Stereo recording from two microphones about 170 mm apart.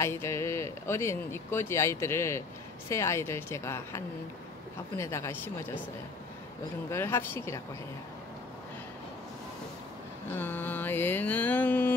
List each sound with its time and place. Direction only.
0.0 s speech: 15° left (ahead or behind)
6.9 s speech: 15° left (ahead or behind)
10.3 s mantra: 10° left (ahead or behind)